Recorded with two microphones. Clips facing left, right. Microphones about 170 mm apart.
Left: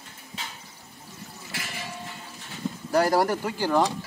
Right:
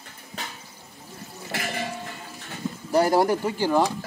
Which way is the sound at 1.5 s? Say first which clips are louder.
Right 8 dB; 60° right (ahead or behind).